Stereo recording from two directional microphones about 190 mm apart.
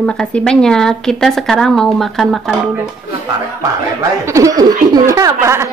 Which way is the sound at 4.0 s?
15° right (ahead or behind).